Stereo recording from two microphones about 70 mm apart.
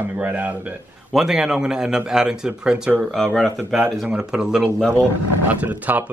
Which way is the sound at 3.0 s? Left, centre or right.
Centre.